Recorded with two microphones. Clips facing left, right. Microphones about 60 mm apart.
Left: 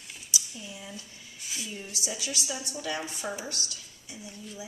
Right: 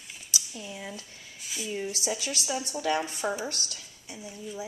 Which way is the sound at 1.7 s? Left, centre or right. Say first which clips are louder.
Right 9 dB; right.